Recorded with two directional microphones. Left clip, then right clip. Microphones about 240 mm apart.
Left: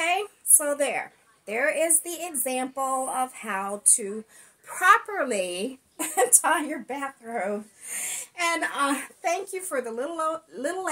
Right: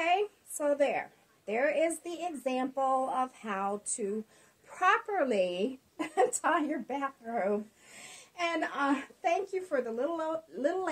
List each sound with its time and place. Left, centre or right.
0.6 s a woman's voice: centre
4.7 s a woman's voice: centre